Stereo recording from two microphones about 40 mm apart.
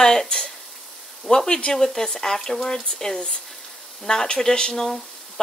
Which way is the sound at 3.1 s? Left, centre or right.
Left.